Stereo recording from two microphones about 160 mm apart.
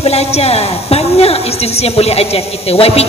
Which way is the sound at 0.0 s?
40° left (ahead or behind).